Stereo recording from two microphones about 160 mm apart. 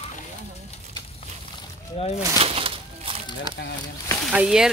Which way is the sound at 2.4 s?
35° right (ahead or behind).